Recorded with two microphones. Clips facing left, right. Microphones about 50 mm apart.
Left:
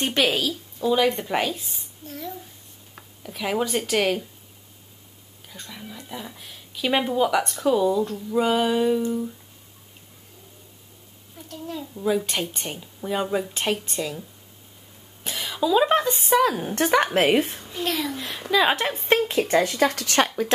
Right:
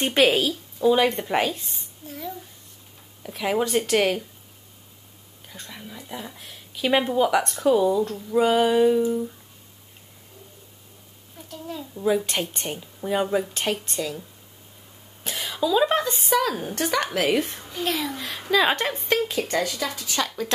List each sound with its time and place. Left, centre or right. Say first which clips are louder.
0.0 s a woman's voice: right 3 dB; centre
5.5 s speech: even; centre
11.3 s speech: left 1 dB; centre
15.2 s a sound: even; centre
15.6 s a woman's voice: left 2 dB; centre
16.7 s speech: left 6 dB; left
17.7 s speech: even; centre
19.0 s speech: left 5 dB; left
19.9 s speech: left 3 dB; left